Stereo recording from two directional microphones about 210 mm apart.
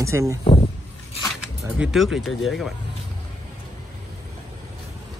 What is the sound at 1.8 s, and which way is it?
Speech, centre (ahead or behind).